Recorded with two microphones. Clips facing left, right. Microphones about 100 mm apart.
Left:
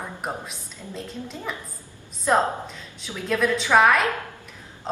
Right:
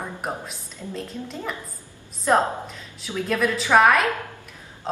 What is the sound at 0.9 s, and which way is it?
A woman's voice, centre (ahead or behind).